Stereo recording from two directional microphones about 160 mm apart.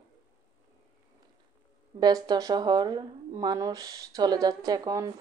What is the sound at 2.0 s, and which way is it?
Speech, 25° right (ahead or behind).